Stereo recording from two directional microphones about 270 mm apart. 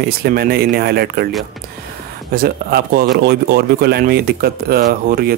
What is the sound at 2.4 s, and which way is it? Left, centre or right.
Speech, right.